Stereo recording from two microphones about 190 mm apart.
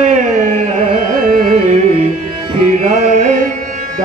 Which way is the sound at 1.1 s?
45° right (ahead or behind).